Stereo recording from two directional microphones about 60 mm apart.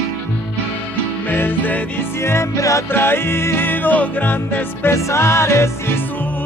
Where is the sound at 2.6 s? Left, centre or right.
Left.